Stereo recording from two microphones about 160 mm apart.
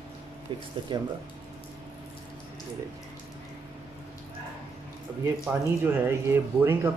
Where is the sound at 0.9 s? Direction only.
30° right (ahead or behind).